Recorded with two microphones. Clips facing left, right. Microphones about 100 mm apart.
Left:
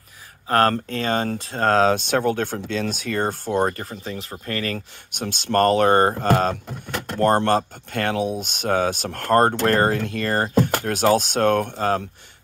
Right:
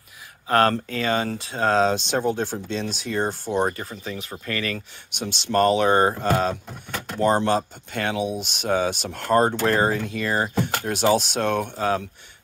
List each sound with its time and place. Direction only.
0.5 s speech: 40° left (ahead or behind)
3.9 s speech: 35° left (ahead or behind)